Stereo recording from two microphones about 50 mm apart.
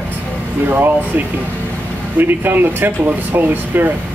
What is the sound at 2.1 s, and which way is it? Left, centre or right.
Speech, right.